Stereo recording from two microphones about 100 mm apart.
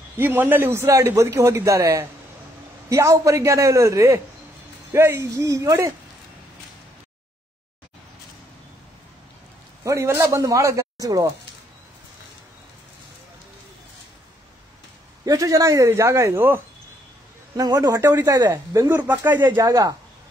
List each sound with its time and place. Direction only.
0.2 s a man's voice: 20° right (ahead or behind)
9.8 s a man's voice: 30° right (ahead or behind)
15.2 s a man's voice: 35° right (ahead or behind)
17.6 s a man's voice: 40° right (ahead or behind)
19.0 s a man's voice: 20° right (ahead or behind); by 20.0 s 35° right (ahead or behind)